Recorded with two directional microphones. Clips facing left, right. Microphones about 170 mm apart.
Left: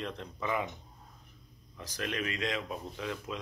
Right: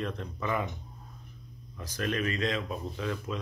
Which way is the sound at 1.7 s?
15° left (ahead or behind).